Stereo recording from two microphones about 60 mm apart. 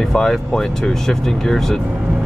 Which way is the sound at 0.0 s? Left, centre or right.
Centre.